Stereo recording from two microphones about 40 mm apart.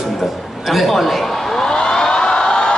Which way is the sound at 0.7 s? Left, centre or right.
Centre.